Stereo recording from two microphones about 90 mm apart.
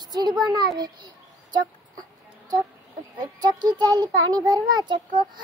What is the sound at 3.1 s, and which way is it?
A child's voice, 50° right (ahead or behind).